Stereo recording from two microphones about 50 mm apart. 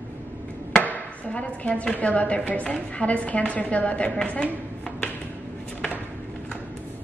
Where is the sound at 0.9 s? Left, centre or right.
Left.